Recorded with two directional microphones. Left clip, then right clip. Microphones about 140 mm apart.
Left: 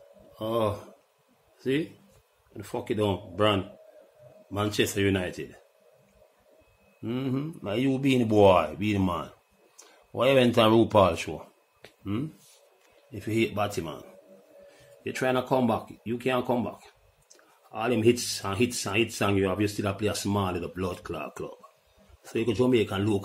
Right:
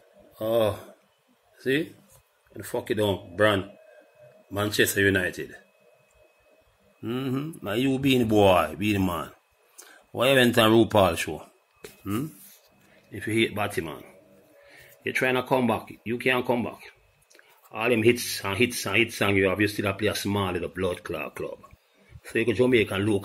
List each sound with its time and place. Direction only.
0.4 s speech: 15° left (ahead or behind)
7.0 s speech: 20° left (ahead or behind)
7.6 s speech: centre (ahead or behind)
12.0 s speech: 10° left (ahead or behind)
15.0 s speech: centre (ahead or behind)